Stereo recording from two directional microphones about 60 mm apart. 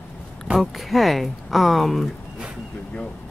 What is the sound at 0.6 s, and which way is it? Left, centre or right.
Speech, centre.